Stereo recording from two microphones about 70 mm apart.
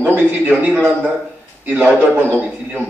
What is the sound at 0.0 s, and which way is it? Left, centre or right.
A man's voice, right.